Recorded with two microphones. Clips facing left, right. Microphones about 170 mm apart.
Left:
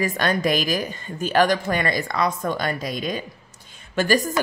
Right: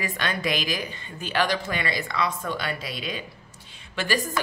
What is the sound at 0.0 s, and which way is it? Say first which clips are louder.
A woman's voice: left 7 dB; 45° left (ahead or behind).